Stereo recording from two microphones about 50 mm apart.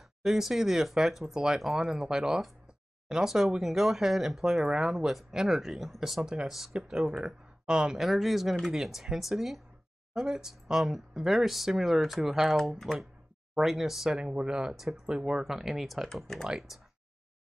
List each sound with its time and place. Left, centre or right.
0.2 s speech: centre
8.0 s speech: centre
13.6 s speech: centre
15.4 s speech: centre